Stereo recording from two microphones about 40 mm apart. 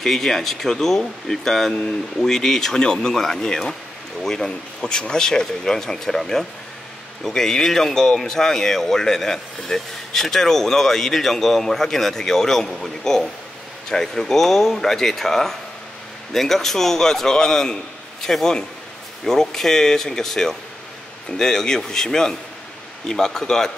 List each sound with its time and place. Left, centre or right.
0.0 s speech: centre
2.8 s speech: centre
3.1 s speech: centre